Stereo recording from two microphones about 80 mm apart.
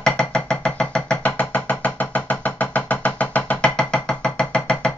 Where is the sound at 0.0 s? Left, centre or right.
Centre.